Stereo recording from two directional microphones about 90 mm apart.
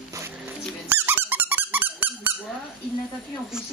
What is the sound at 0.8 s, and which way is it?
Squeak, 25° right (ahead or behind).